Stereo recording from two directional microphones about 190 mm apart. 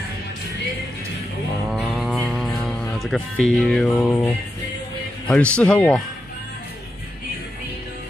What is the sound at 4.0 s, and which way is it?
Speech, 15° left (ahead or behind).